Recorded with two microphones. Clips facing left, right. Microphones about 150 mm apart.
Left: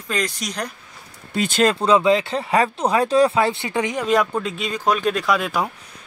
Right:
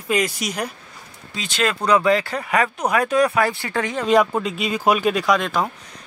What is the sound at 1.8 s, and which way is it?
Speech, 25° left (ahead or behind).